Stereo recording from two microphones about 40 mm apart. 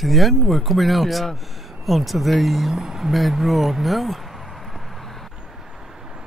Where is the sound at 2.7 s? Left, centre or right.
Centre.